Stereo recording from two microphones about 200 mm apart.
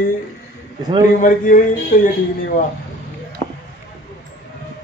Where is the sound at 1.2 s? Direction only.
40° left (ahead or behind).